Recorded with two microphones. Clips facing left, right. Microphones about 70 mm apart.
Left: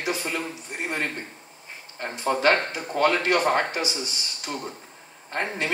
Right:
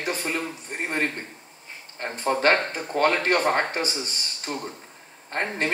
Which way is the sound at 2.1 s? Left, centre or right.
Right.